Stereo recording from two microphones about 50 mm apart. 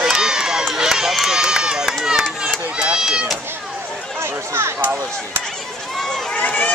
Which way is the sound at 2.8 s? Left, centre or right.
Centre.